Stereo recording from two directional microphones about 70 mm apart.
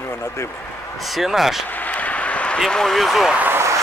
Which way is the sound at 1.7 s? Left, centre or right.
Left.